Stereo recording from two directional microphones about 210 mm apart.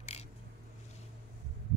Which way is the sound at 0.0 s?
30° left (ahead or behind).